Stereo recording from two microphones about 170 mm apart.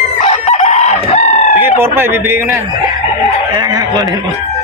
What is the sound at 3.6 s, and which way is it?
Speech, 25° right (ahead or behind).